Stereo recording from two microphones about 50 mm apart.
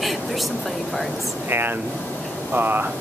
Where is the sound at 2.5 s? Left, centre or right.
Right.